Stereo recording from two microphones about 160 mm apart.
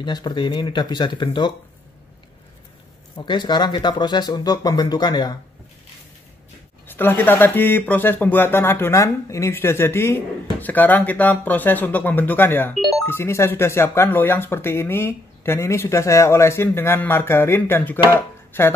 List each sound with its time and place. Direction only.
0.0 s speech: 25° left (ahead or behind)
3.2 s speech: 25° left (ahead or behind)
6.9 s speech: 15° left (ahead or behind)
12.7 s telephone bell ringing: centre (ahead or behind)
13.0 s speech: 15° left (ahead or behind)